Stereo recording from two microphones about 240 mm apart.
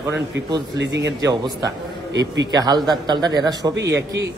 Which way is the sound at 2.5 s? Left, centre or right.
Centre.